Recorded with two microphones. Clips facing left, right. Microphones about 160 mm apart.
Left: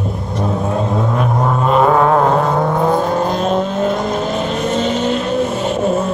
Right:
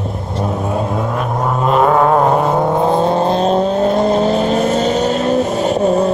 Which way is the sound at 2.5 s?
25° right (ahead or behind).